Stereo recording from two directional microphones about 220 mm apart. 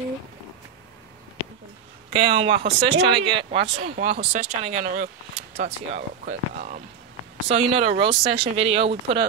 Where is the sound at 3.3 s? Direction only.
20° right (ahead or behind).